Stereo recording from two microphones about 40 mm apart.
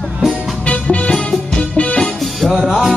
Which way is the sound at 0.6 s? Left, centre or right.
Left.